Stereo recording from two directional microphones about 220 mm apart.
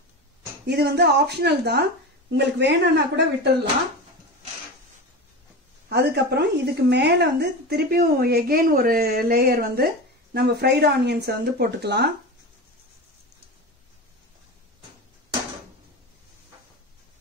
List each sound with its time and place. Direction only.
0.7 s speech: 50° right (ahead or behind)
5.9 s speech: 50° right (ahead or behind)